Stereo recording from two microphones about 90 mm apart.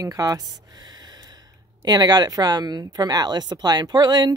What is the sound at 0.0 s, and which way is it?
Speech, 40° right (ahead or behind).